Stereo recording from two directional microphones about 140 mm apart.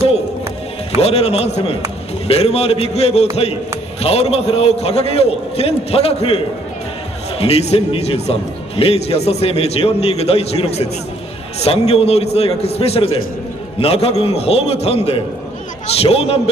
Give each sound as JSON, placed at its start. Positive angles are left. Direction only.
{"t": 0.9, "sound": "speech", "side_deg": 45}